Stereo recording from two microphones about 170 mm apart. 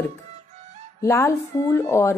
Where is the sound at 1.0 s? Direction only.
15° left (ahead or behind).